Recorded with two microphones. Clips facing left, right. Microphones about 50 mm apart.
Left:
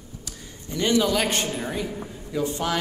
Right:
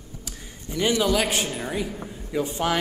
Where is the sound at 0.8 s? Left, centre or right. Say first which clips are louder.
Even; centre.